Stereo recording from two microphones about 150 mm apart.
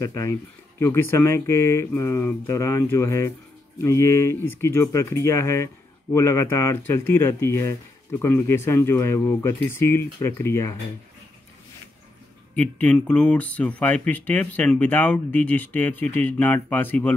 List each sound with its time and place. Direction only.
0.0 s speech: 20° left (ahead or behind)
12.5 s speech: 10° left (ahead or behind)